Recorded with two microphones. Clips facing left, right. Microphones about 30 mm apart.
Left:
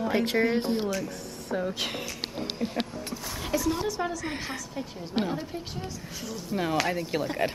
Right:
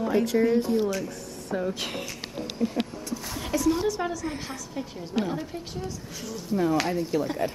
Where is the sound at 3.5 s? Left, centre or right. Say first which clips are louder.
Right 4 dB; centre.